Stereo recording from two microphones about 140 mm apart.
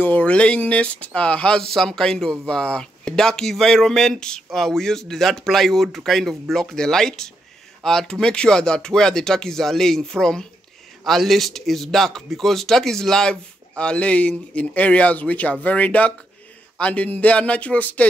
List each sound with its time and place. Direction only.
0.0 s speech: 10° left (ahead or behind)